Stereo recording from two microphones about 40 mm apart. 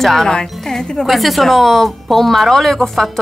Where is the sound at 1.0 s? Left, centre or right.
Centre.